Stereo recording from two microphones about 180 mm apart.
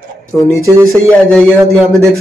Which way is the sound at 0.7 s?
15° right (ahead or behind).